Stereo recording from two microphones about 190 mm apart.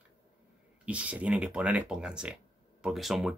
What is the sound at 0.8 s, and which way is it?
Speech, 5° right (ahead or behind).